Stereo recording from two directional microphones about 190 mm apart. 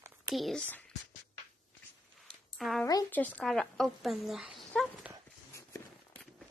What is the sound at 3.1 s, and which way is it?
A woman's voice, 10° left (ahead or behind).